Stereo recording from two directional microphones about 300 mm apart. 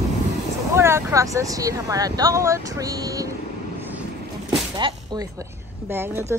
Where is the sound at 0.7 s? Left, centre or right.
Centre.